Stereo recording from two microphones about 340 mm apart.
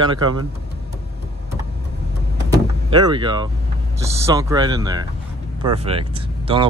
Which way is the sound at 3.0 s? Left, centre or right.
Centre.